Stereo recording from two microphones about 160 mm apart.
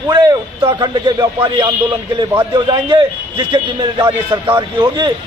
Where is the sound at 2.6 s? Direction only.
30° right (ahead or behind).